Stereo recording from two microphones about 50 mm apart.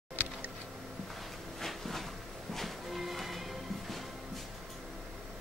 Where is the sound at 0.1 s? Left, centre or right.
Right.